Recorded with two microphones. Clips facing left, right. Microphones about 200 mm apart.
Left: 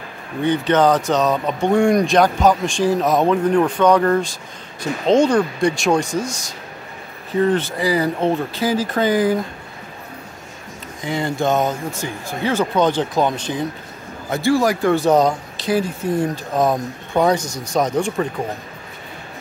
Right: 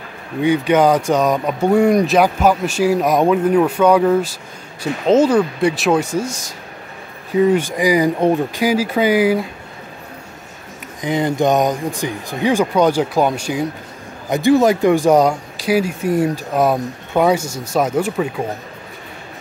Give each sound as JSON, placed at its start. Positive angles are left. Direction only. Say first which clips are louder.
{"t": 0.4, "sound": "speech", "louder": "right 2 dB", "side_deg": -10}
{"t": 7.3, "sound": "speech", "louder": "right 3 dB", "side_deg": -10}
{"t": 11.0, "sound": "speech", "louder": "right 4 dB", "side_deg": -20}